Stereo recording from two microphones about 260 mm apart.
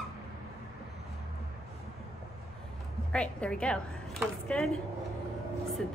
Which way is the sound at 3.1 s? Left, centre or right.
Centre.